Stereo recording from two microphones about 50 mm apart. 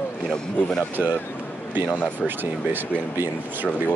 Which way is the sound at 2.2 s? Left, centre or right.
Right.